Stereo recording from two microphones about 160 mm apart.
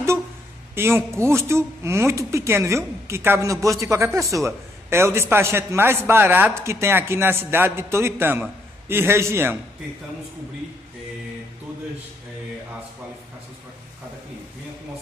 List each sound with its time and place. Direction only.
0.7 s a man's voice: 15° right (ahead or behind)